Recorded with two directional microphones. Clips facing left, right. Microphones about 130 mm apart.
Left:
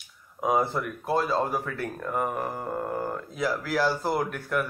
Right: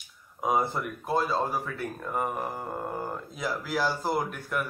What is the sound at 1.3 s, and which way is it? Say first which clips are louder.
A man's voice: left 2 dB; 15° right (ahead or behind).